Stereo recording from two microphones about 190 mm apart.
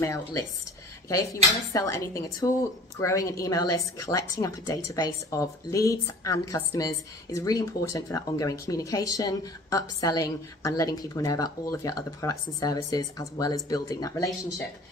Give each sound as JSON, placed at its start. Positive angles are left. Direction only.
{"t": 0.0, "sound": "speech", "side_deg": 15}